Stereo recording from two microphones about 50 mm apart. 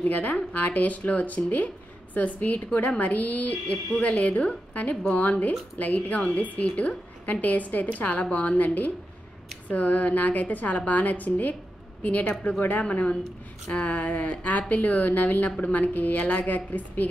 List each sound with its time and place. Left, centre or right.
0.0 s a woman's voice: left